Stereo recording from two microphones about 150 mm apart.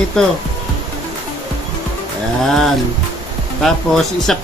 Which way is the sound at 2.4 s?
Centre (ahead or behind).